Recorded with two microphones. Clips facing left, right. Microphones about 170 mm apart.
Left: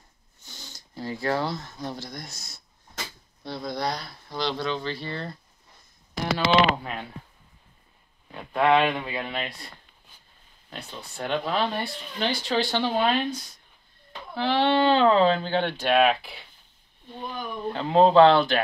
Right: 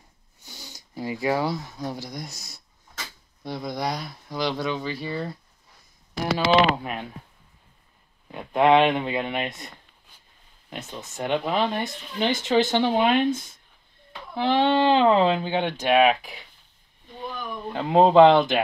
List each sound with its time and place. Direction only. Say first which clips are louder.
0.5 s speech: right 2 dB; 15° right (ahead or behind)
3.4 s speech: right 1 dB; 15° right (ahead or behind)
8.3 s speech: right 3 dB; 20° right (ahead or behind)
10.7 s speech: right 3 dB; 20° right (ahead or behind)
17.7 s speech: right 1 dB; 10° right (ahead or behind)